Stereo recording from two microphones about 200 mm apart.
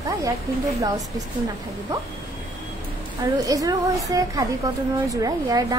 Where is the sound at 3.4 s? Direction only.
15° right (ahead or behind).